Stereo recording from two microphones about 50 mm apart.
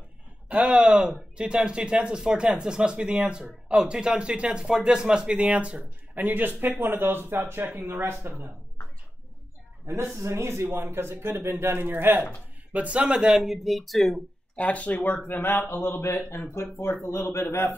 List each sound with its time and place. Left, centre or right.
0.5 s speech: right
6.2 s speech: right
10.1 s speech: right
12.7 s speech: right
13.4 s speech: centre
14.5 s speech: left
17.0 s a man's voice: left
17.5 s speech: left